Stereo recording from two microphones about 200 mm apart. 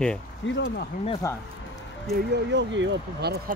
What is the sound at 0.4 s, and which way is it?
Speech, 65° left (ahead or behind).